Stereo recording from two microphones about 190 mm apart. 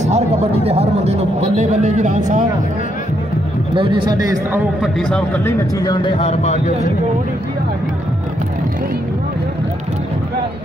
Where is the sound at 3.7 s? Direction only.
25° right (ahead or behind).